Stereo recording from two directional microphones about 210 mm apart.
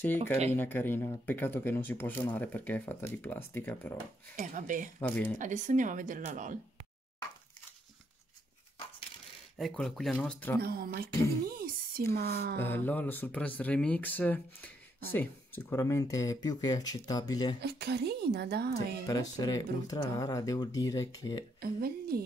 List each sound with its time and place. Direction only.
0.0 s speech: 10° left (ahead or behind)
4.4 s a woman's voice: 40° right (ahead or behind)
5.0 s speech: 5° left (ahead or behind)
5.4 s a woman's voice: 35° right (ahead or behind)
9.6 s speech: centre (ahead or behind)
10.6 s speech: 45° right (ahead or behind)
12.5 s speech: 10° left (ahead or behind)
17.6 s speech: 50° right (ahead or behind)
19.0 s speech: 20° left (ahead or behind)
21.5 s speech: 45° right (ahead or behind)